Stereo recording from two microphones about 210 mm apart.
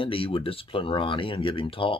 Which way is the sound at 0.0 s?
25° left (ahead or behind).